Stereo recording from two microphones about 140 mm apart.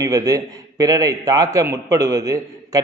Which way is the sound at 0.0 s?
25° right (ahead or behind).